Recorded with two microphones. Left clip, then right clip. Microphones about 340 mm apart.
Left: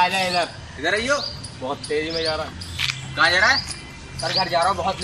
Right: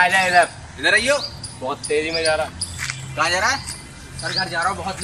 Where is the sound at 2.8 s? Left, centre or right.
Centre.